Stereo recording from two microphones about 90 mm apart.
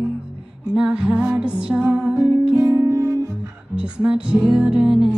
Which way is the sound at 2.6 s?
35° right (ahead or behind).